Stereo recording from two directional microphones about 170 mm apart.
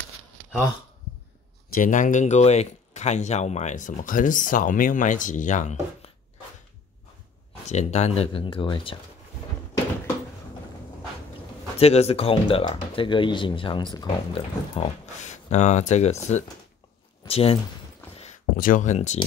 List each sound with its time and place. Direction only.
1.7 s speech: 50° left (ahead or behind)
7.6 s speech: 40° left (ahead or behind)
11.8 s speech: 35° left (ahead or behind)
18.6 s speech: 50° left (ahead or behind)